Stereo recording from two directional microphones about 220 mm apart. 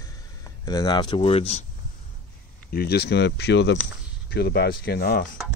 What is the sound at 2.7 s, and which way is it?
Speech, 45° left (ahead or behind).